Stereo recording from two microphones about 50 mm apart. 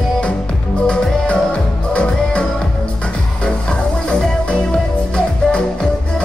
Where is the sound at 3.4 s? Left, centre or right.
Centre.